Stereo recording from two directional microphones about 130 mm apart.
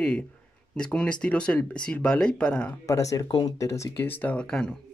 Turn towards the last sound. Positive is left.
turn(degrees=5)  # may be behind; listen again after turning